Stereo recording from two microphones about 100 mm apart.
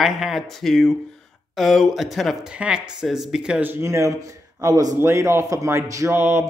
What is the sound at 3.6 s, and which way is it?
A man's voice, 25° right (ahead or behind).